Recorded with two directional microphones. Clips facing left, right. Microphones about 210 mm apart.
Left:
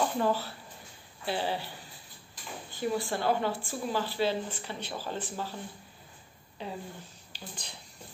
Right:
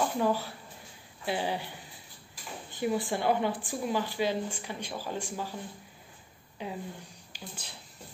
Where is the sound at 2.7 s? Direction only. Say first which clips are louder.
Right 1 dB; 20° right (ahead or behind).